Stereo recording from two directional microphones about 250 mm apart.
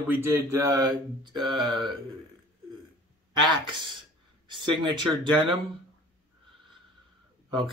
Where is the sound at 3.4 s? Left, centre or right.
Centre.